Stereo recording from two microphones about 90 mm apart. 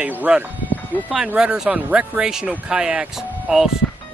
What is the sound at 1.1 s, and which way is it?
Speech, 10° right (ahead or behind).